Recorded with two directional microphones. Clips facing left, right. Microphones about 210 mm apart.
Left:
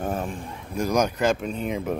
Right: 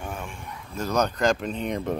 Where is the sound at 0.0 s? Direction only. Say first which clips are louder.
Left 7 dB; 35° left (ahead or behind).